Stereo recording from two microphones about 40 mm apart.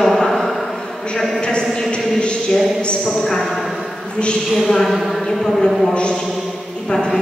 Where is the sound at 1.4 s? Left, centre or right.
Left.